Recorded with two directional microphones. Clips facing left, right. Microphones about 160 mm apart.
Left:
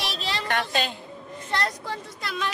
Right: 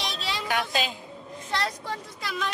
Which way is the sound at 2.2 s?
Centre (ahead or behind).